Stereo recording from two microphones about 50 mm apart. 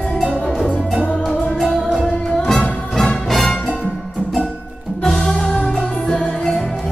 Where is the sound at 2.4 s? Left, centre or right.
Centre.